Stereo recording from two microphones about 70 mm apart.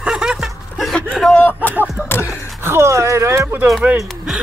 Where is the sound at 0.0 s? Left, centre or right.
Centre.